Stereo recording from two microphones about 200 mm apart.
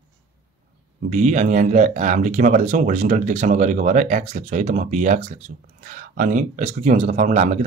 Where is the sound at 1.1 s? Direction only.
40° right (ahead or behind).